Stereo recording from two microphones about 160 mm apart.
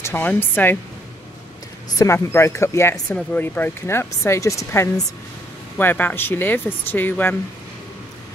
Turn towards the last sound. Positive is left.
turn(degrees=10)  # may be behind; listen again after turning